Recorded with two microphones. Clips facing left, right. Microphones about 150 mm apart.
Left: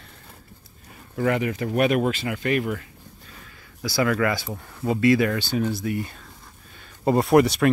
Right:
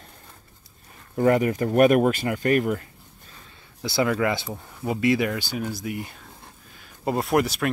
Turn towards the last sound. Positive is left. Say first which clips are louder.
# left 5 dB
turn(degrees=0)  # may be behind; listen again after turning